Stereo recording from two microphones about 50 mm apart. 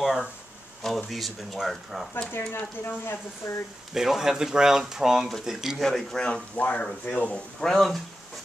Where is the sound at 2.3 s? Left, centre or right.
Left.